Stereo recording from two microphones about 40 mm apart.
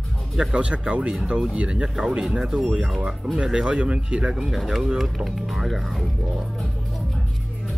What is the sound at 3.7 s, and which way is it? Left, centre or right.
Speech, right.